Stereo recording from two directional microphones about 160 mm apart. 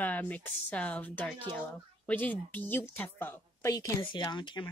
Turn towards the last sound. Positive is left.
turn(degrees=30)  # may be behind; listen again after turning